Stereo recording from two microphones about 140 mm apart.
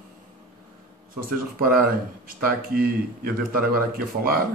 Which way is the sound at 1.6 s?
90° right.